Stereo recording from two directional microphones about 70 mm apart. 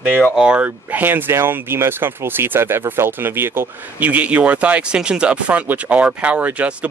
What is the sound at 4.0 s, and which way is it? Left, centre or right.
Speech, right.